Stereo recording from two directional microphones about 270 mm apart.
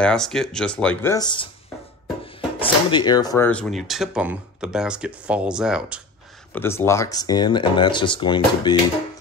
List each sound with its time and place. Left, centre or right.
0.0 s speech: centre
2.6 s speech: centre
6.5 s speech: centre